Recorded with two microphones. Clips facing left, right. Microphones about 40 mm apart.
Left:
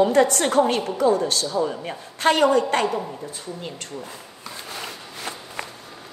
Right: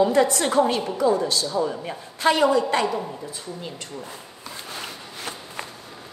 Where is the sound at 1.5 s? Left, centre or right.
Centre.